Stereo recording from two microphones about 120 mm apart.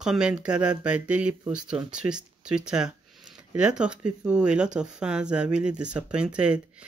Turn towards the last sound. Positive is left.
turn(degrees=-10)  # may be behind; listen again after turning